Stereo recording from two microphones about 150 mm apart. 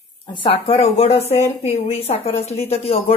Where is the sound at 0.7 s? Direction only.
45° left (ahead or behind).